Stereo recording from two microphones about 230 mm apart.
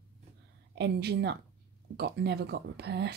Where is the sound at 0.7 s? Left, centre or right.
Right.